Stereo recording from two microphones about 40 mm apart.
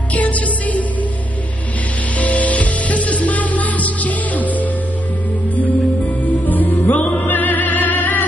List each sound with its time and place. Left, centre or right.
0.1 s music: left
2.1 s music: left
6.4 s music: left